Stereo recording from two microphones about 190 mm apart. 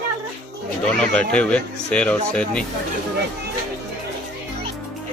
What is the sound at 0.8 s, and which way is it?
Speech, 5° left (ahead or behind).